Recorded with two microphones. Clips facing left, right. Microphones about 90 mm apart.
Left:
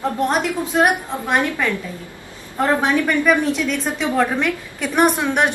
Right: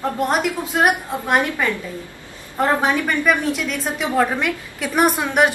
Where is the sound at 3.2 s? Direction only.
5° right (ahead or behind).